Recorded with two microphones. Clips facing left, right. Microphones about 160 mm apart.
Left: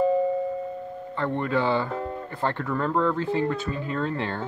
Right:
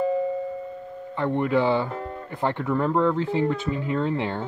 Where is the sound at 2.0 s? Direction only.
20° left (ahead or behind).